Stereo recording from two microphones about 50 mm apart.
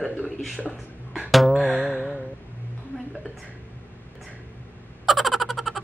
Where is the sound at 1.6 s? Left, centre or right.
Right.